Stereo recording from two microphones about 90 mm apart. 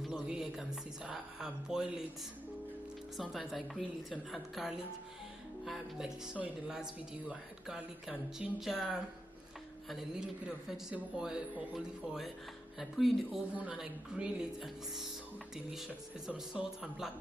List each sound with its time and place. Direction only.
0.0 s speech: 5° right (ahead or behind)
3.2 s a woman's voice: centre (ahead or behind)
13.6 s speech: 15° right (ahead or behind)
16.3 s speech: 10° right (ahead or behind)